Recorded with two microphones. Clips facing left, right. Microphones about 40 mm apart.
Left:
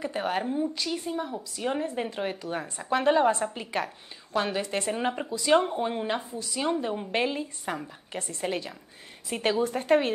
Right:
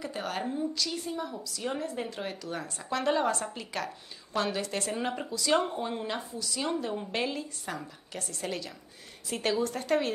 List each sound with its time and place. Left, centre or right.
0.0 s speech: left